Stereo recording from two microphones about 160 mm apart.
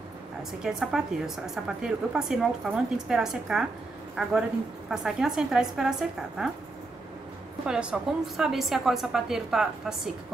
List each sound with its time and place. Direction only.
0.4 s a woman's voice: 5° right (ahead or behind)
7.6 s a woman's voice: 5° right (ahead or behind)